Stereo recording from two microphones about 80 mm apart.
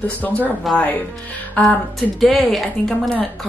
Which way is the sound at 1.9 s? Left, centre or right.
Centre.